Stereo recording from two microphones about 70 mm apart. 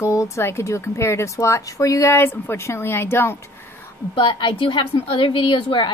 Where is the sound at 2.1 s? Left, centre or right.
Left.